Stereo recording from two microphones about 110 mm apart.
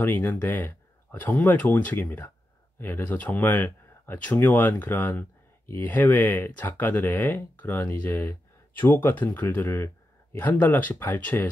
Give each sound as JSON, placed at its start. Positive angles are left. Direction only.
{"t": 0.0, "sound": "speech", "side_deg": 20}